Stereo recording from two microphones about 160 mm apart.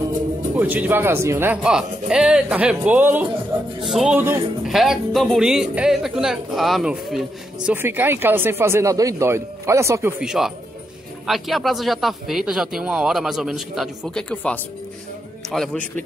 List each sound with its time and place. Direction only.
0.6 s speech: 10° right (ahead or behind)
10.2 s speech: 5° right (ahead or behind)